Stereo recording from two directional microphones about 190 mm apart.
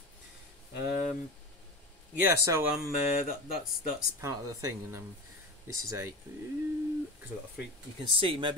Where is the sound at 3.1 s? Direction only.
50° left (ahead or behind).